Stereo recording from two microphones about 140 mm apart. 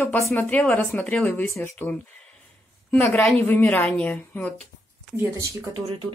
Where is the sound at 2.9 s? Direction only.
10° left (ahead or behind).